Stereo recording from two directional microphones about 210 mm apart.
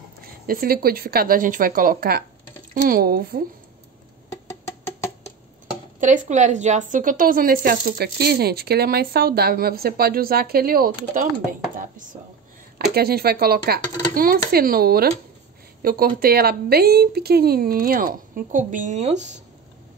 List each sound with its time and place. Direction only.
0.2 s a woman's voice: 45° right (ahead or behind)
5.9 s a woman's voice: 35° right (ahead or behind)